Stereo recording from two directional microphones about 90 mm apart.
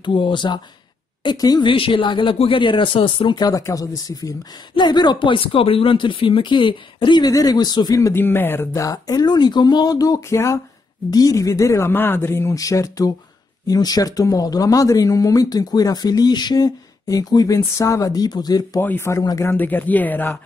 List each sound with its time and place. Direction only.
0.0 s speech: 65° left (ahead or behind)
1.2 s speech: 45° left (ahead or behind)
1.7 s speech: 70° left (ahead or behind)
3.3 s speech: 45° left (ahead or behind)
4.7 s speech: 55° left (ahead or behind)
8.1 s speech: 25° left (ahead or behind); by 18.8 s 50° left (ahead or behind)
18.8 s speech: 25° left (ahead or behind)